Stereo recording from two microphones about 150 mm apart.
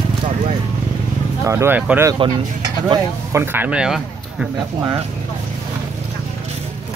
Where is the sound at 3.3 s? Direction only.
15° right (ahead or behind).